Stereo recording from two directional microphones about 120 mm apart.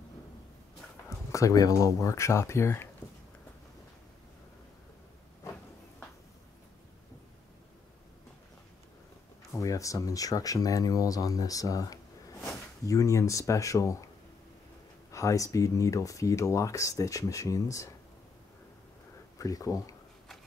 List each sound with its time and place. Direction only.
1.3 s speech: 30° left (ahead or behind)
9.6 s speech: 25° left (ahead or behind)
15.0 s speech: 25° left (ahead or behind)
19.3 s speech: 30° left (ahead or behind)